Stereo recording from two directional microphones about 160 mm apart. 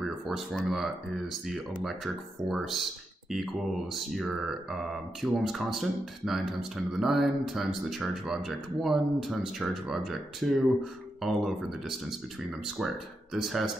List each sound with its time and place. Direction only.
0.0 s speech: centre (ahead or behind)